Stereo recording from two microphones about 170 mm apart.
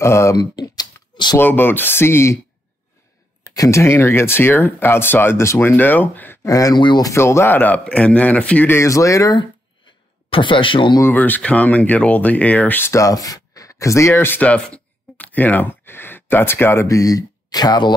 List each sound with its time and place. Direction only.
0.0 s a sound: 15° left (ahead or behind)
1.4 s speech: 10° left (ahead or behind)
3.5 s speech: 20° left (ahead or behind)
11.0 s speech: 10° left (ahead or behind)